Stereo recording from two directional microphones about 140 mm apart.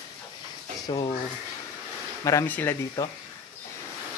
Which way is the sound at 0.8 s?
25° left (ahead or behind).